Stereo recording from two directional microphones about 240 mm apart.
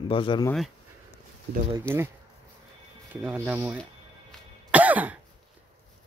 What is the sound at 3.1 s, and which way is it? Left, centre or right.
Speech, centre.